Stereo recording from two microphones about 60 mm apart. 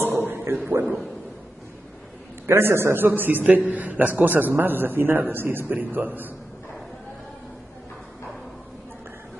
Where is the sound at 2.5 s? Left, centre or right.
Right.